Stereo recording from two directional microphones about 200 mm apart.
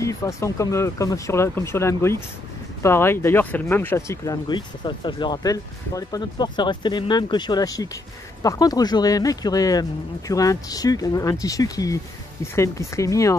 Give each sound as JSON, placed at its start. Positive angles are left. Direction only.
{"t": 0.0, "sound": "speech", "side_deg": 15}